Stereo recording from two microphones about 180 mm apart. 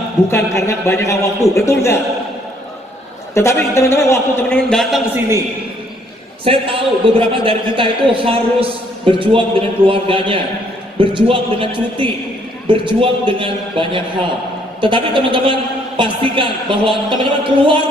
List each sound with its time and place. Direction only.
0.3 s a man's voice: 15° left (ahead or behind)
3.3 s a man's voice: 15° left (ahead or behind)
4.6 s a man's voice: centre (ahead or behind)
6.4 s a man's voice: 30° right (ahead or behind)